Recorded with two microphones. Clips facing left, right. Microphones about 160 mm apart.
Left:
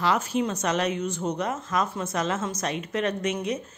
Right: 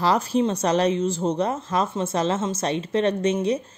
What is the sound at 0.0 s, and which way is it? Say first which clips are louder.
Speech: right 4 dB; 35° right (ahead or behind).